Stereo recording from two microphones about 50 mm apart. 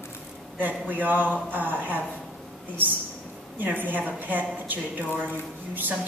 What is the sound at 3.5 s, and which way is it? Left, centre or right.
A woman's voice, right.